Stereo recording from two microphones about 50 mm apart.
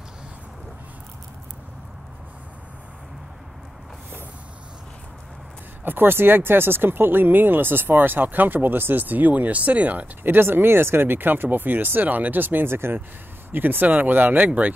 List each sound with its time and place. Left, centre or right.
5.9 s speech: right
10.2 s speech: right
13.5 s speech: right